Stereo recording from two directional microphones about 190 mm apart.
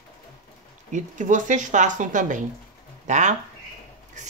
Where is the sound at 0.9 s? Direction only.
40° right (ahead or behind).